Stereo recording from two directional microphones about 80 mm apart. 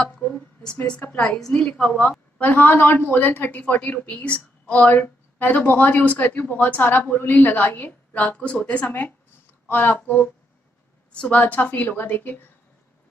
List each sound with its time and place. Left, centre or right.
0.2 s a sound: centre
0.8 s a woman's voice: centre
2.5 s a woman's voice: left